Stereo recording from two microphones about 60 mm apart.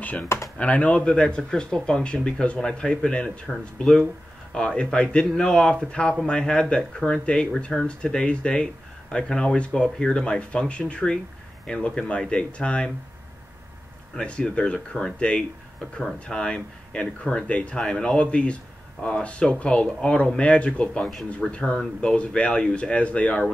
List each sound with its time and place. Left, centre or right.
0.0 s speech: left
14.1 s speech: centre